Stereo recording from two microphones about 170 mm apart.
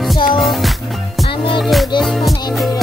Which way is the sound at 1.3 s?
30° left (ahead or behind).